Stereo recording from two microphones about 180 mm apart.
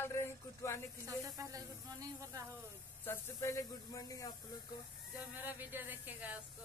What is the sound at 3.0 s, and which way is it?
Speech, 15° left (ahead or behind).